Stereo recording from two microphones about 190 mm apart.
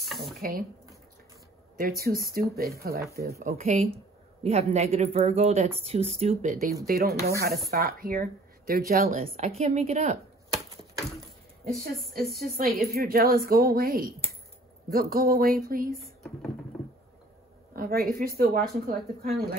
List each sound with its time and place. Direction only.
0.4 s speech: 50° right (ahead or behind)
1.8 s speech: 50° right (ahead or behind)
3.5 s speech: 35° right (ahead or behind)
6.9 s speech: 55° right (ahead or behind)
9.0 s speech: 35° right (ahead or behind)
12.4 s speech: 50° right (ahead or behind)
16.0 s speech: centre (ahead or behind)
16.7 s a sound: centre (ahead or behind)
17.7 s speech: 50° right (ahead or behind)